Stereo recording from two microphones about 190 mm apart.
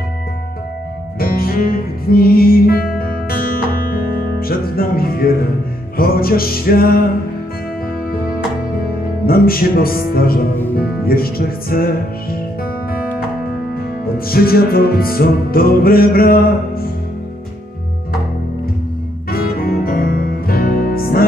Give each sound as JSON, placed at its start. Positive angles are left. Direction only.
{"t": 1.2, "sound": "music", "side_deg": 50}
{"t": 9.2, "sound": "music", "side_deg": 50}
{"t": 13.7, "sound": "music", "side_deg": 50}
{"t": 19.3, "sound": "music", "side_deg": 50}